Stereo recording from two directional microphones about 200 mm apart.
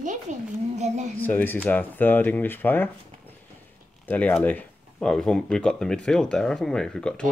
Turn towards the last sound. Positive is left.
turn(degrees=5)  # may be behind; listen again after turning